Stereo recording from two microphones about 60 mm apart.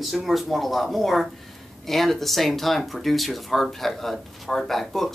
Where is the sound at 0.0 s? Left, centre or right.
Centre.